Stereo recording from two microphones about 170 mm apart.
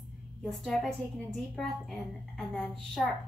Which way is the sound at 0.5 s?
Centre (ahead or behind).